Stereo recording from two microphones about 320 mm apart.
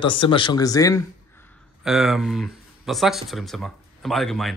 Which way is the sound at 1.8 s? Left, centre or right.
Centre.